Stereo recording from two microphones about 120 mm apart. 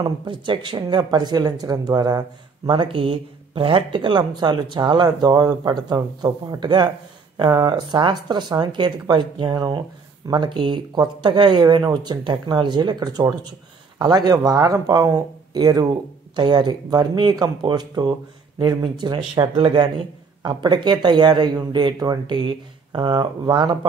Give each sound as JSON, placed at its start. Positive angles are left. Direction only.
{"t": 0.0, "sound": "speech", "side_deg": -40}
{"t": 2.8, "sound": "speech", "side_deg": -50}